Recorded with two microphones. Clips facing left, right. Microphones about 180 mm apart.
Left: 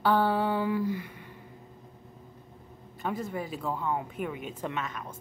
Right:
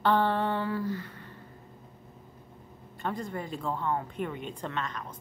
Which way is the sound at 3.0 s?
5° left (ahead or behind).